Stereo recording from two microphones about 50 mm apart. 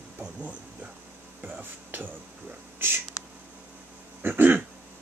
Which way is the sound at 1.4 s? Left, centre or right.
Right.